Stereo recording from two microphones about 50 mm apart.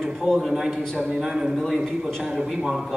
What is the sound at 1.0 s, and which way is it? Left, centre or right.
A man's voice, centre.